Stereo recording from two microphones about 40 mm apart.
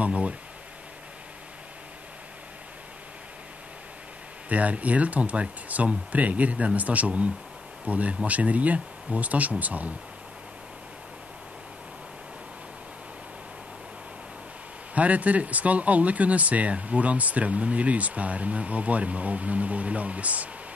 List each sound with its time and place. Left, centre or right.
0.0 s speech: right
4.5 s speech: right
15.0 s speech: right